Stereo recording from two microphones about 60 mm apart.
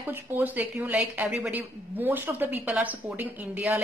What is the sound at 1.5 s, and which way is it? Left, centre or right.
A woman's voice, right.